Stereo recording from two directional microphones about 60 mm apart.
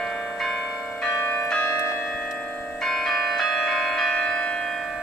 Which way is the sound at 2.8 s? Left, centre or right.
Centre.